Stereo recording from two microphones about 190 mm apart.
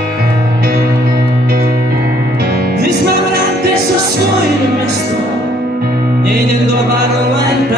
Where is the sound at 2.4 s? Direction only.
55° right (ahead or behind).